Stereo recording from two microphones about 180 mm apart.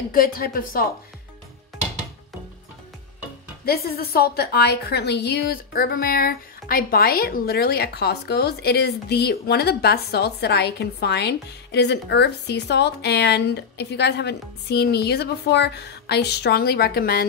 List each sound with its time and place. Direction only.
0.1 s speech: 50° left (ahead or behind)
3.6 s a woman's voice: 60° left (ahead or behind)